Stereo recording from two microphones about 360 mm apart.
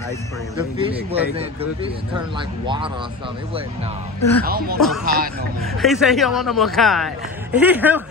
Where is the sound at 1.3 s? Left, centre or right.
Centre.